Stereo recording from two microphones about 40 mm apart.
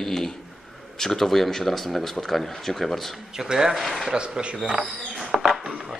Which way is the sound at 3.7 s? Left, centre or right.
Centre.